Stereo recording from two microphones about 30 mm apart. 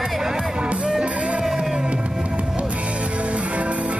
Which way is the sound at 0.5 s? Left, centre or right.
Right.